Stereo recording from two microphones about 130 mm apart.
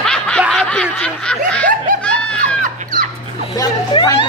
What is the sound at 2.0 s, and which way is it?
Laughter, 10° left (ahead or behind).